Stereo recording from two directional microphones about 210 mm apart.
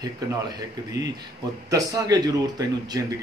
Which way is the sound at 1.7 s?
20° right (ahead or behind).